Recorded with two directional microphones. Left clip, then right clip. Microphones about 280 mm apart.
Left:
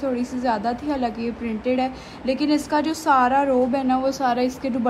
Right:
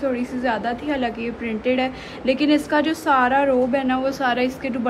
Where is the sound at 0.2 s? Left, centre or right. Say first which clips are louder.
Even; centre.